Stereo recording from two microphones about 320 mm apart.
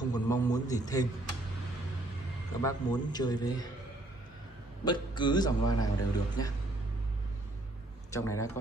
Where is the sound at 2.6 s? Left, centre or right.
Centre.